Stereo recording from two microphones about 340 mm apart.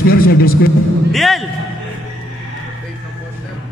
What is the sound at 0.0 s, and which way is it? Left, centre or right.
Speech, left.